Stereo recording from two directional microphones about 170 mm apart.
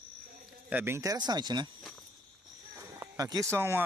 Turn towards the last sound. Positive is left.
turn(degrees=-15)  # may be behind; listen again after turning